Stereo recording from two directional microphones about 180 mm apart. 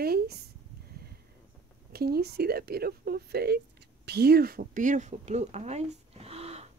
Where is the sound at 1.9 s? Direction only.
60° right (ahead or behind).